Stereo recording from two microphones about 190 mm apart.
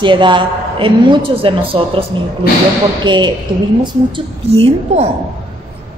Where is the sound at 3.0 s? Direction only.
25° right (ahead or behind).